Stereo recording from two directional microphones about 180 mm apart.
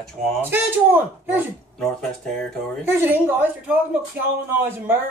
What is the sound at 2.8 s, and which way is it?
Speech, 10° right (ahead or behind).